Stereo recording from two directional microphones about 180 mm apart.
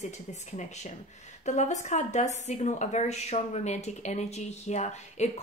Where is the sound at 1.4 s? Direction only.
40° left (ahead or behind).